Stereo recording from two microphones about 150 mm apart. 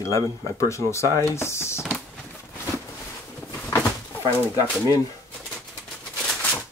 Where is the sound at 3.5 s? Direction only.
10° left (ahead or behind).